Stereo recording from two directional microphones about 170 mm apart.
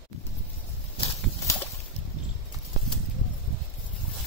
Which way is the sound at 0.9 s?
20° left (ahead or behind).